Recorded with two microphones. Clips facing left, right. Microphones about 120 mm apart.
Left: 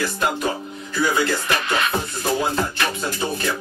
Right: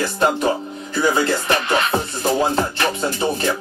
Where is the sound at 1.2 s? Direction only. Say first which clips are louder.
Right 3 dB; 30° right (ahead or behind).